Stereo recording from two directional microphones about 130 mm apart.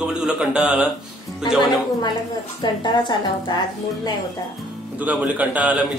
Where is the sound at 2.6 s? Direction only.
35° left (ahead or behind).